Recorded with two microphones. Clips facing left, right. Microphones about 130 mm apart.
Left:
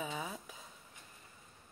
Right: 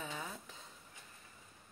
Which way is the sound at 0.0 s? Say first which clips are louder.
Left 4 dB; 10° left (ahead or behind).